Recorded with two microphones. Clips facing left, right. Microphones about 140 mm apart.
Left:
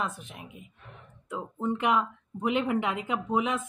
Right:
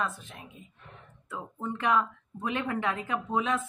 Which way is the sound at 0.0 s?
15° left (ahead or behind).